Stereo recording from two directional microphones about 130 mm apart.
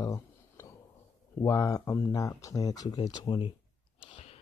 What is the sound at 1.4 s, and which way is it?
Speech, 25° left (ahead or behind).